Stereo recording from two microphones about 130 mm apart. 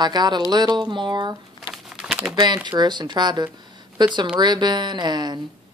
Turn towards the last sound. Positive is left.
turn(degrees=-35)  # may be behind; listen again after turning